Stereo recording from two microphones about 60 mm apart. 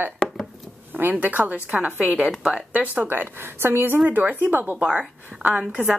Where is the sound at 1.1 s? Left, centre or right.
Right.